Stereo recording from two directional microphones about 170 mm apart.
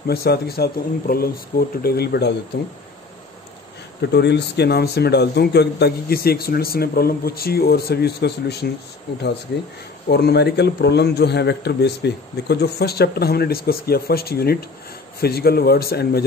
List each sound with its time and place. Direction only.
0.0 s speech: 65° left (ahead or behind)
4.1 s speech: 80° left
10.0 s speech: 70° left (ahead or behind)